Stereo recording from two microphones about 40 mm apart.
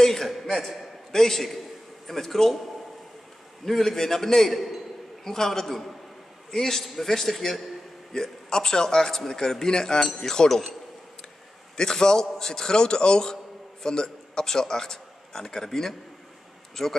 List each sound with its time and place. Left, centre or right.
0.0 s a man's voice: centre
0.5 s a man's voice: centre
1.1 s a man's voice: centre
3.6 s a man's voice: centre
8.1 s a man's voice: centre
11.7 s a man's voice: centre